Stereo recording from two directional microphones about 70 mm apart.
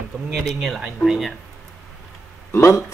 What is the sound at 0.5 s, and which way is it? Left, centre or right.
Speech, centre.